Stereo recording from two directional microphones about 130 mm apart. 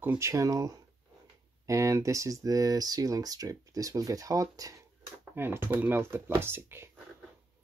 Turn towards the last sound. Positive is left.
turn(degrees=-20)  # may be behind; listen again after turning